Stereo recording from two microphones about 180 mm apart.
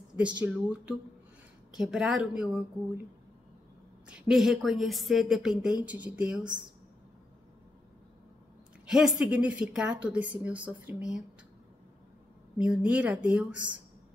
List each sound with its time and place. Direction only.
0.1 s a woman's voice: 5° right (ahead or behind)
4.1 s a woman's voice: centre (ahead or behind)
8.8 s a woman's voice: 5° right (ahead or behind)
12.5 s speech: 5° right (ahead or behind)